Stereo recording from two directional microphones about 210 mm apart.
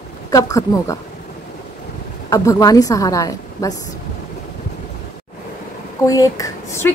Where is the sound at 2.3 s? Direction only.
15° left (ahead or behind).